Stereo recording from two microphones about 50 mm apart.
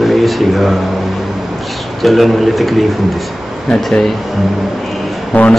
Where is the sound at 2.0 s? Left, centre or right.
Centre.